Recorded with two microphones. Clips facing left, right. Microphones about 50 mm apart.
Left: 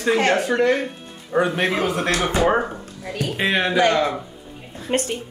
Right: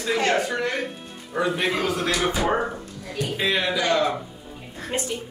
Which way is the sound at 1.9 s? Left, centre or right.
Left.